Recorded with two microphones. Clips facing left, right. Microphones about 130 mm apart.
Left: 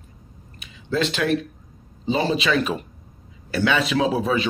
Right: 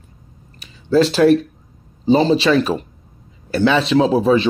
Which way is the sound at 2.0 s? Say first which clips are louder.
Right 8 dB; 30° right (ahead or behind).